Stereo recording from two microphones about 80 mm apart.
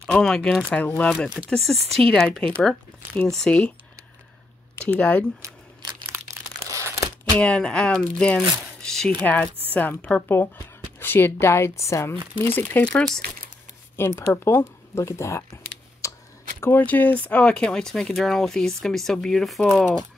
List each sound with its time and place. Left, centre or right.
0.0 s speech: centre
4.8 s speech: centre
5.4 s speech: right
7.3 s speech: centre
9.2 s speech: left
12.4 s speech: left
12.9 s speech: centre
13.9 s speech: left
16.6 s speech: left; by 19.8 s centre